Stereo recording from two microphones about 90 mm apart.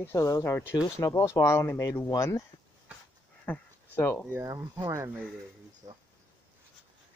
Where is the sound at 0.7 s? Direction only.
40° left (ahead or behind).